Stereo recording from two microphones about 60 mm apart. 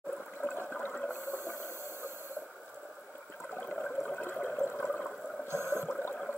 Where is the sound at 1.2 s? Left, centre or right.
Right.